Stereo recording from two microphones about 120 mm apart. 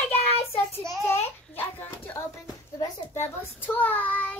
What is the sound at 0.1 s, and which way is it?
Child singing, 55° left (ahead or behind).